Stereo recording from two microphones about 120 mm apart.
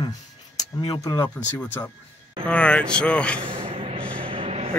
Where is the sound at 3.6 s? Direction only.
50° right (ahead or behind).